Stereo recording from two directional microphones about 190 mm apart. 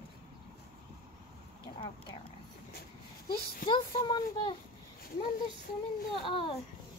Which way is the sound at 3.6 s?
25° left (ahead or behind).